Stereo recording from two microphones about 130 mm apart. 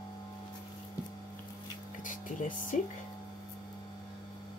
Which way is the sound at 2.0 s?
90° left.